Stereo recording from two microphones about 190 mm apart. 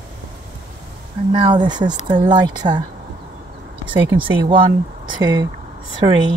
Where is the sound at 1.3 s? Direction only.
25° right (ahead or behind).